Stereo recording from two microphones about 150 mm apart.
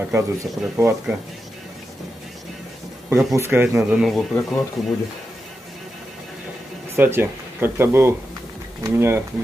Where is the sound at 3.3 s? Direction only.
15° right (ahead or behind).